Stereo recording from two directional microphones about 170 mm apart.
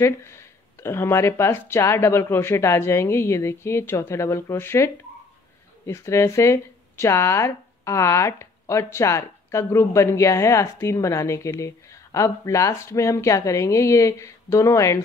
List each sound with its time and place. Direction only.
0.0 s speech: 15° left (ahead or behind)